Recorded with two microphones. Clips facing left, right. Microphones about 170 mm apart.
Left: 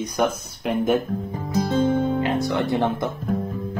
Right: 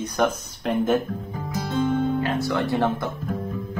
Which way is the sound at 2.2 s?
20° left (ahead or behind).